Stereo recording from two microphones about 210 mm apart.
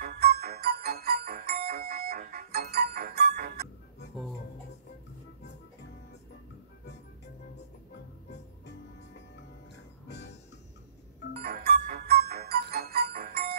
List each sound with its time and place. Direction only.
0.0 s music: 45° right (ahead or behind)
11.4 s music: 45° right (ahead or behind)